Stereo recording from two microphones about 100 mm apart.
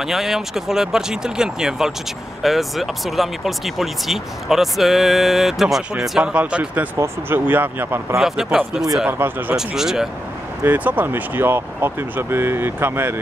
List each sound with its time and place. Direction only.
0.0 s speech: 5° right (ahead or behind); by 8.2 s 20° right (ahead or behind)
8.2 s speech: 5° right (ahead or behind)
9.2 s speech: 25° right (ahead or behind)
9.6 s speech: 5° right (ahead or behind)
10.6 s speech: 15° right (ahead or behind)